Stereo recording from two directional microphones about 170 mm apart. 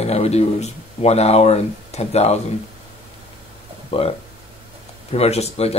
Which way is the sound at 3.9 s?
35° left (ahead or behind).